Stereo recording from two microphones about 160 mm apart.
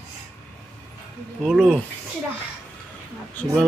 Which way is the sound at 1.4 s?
Centre (ahead or behind).